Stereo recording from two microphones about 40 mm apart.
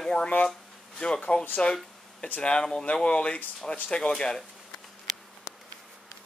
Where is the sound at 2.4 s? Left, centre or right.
Left.